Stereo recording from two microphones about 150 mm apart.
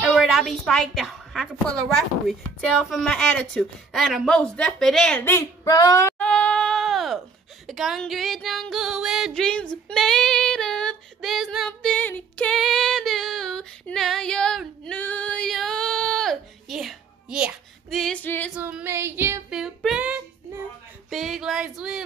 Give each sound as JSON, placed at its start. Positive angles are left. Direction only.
{"t": 0.1, "sound": "a sound", "side_deg": 0}
{"t": 2.8, "sound": "female singing", "side_deg": 0}
{"t": 5.2, "sound": "speech", "side_deg": 20}
{"t": 6.1, "sound": "a sound", "side_deg": 10}
{"t": 7.6, "sound": "female singing", "side_deg": 0}
{"t": 18.6, "sound": "female singing", "side_deg": -10}
{"t": 19.5, "sound": "child singing", "side_deg": -5}
{"t": 21.1, "sound": "female singing", "side_deg": 0}